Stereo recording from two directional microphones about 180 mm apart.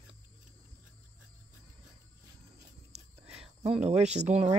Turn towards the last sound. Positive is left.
turn(degrees=-40)  # may be behind; listen again after turning